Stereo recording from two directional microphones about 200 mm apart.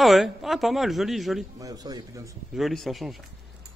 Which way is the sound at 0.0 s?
Centre (ahead or behind).